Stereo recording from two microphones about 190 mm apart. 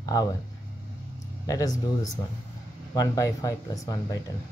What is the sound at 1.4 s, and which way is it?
Speech, 20° left (ahead or behind).